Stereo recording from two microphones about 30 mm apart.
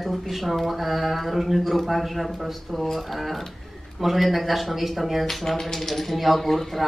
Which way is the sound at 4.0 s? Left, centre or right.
Centre.